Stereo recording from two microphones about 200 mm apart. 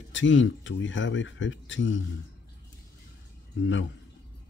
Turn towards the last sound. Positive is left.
turn(degrees=70)  # may be behind; listen again after turning